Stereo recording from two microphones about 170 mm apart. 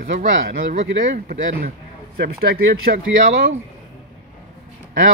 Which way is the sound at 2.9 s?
90° right.